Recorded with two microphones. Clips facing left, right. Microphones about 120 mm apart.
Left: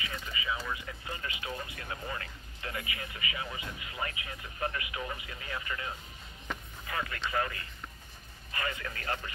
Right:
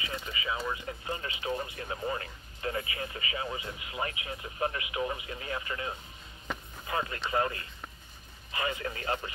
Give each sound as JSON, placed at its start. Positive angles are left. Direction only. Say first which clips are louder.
{"t": 0.0, "sound": "speech", "louder": "right 2 dB", "side_deg": -25}